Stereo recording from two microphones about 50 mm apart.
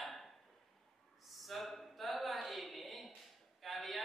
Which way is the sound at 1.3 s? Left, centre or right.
Centre.